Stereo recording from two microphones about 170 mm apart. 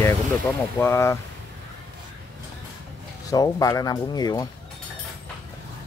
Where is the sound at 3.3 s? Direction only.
20° left (ahead or behind).